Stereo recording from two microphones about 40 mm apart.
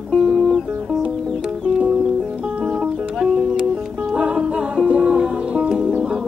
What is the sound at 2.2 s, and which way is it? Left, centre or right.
Music, right.